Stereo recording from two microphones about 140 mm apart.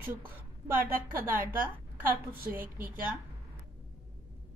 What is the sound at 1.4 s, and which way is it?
Speech, 15° right (ahead or behind).